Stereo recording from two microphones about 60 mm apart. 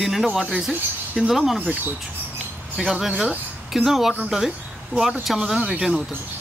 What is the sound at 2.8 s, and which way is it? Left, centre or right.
Speech, centre.